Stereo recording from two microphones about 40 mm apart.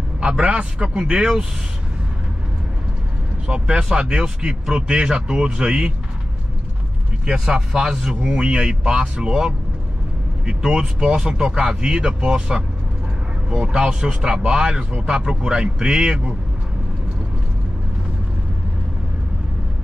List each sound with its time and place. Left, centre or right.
0.3 s speech: right
3.4 s speech: right
7.2 s speech: right
10.6 s speech: centre